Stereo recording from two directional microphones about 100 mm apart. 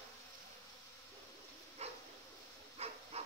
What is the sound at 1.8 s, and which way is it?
Dog, 90° right.